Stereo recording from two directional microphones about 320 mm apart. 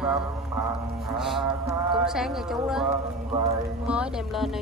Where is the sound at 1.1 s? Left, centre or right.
Centre.